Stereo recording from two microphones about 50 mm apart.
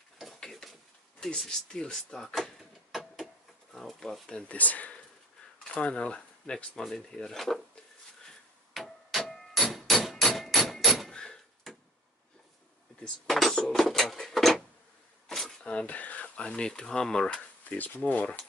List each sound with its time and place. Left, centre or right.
0.4 s a sound: centre
3.7 s speech: centre
4.3 s speech: left
4.6 s speech: left
5.6 s speech: centre
6.7 s speech: centre
8.7 s a sound: centre
11.1 s door: centre
13.3 s a sound: centre
15.6 s speech: left
17.6 s speech: left